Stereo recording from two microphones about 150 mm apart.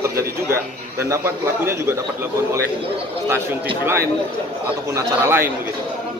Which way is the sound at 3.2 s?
15° right (ahead or behind).